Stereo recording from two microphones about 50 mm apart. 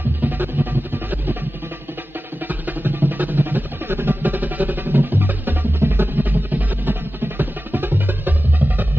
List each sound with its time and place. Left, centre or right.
0.2 s music: right
2.4 s music: right